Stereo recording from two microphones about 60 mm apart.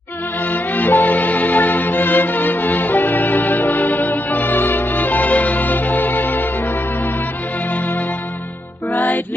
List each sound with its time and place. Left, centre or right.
0.4 s music: left
8.9 s music: left